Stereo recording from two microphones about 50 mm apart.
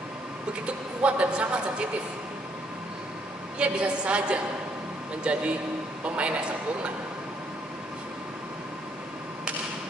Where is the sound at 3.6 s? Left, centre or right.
Right.